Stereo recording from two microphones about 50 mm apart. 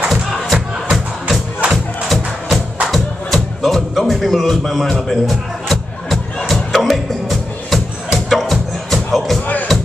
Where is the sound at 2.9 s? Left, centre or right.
Centre.